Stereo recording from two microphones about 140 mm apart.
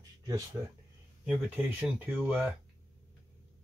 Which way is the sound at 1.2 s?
10° right (ahead or behind).